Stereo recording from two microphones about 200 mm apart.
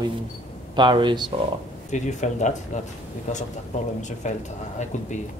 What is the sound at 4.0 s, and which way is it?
Speech, 35° left (ahead or behind).